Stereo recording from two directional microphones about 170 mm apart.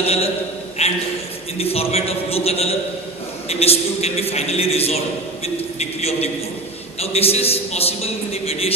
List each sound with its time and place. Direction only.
0.0 s a man's voice: 35° left (ahead or behind)